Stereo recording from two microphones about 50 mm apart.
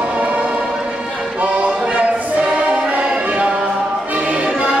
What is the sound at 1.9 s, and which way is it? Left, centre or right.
Music, right.